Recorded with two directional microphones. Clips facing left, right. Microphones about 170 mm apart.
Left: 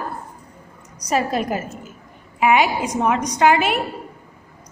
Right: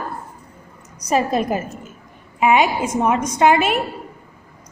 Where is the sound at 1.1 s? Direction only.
30° right (ahead or behind).